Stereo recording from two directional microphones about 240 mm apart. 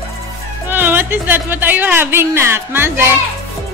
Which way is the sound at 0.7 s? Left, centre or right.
Centre.